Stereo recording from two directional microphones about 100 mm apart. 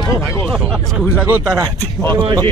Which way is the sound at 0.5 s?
10° right (ahead or behind).